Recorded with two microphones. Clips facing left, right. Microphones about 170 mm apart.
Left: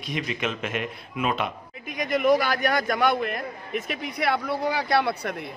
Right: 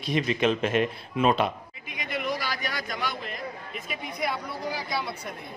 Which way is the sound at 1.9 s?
45° left (ahead or behind).